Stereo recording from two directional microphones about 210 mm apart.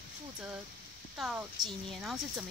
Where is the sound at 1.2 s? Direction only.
5° right (ahead or behind).